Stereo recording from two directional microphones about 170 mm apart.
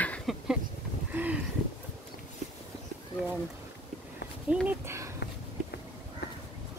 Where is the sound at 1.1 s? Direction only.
10° right (ahead or behind).